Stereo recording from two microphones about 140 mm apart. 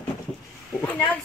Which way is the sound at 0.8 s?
10° left (ahead or behind).